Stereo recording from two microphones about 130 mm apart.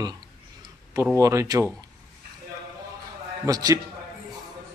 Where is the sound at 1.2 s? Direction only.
25° right (ahead or behind).